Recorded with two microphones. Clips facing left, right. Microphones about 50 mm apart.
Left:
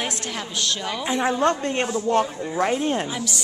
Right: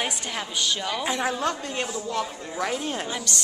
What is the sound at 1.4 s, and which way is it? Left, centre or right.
Speech, left.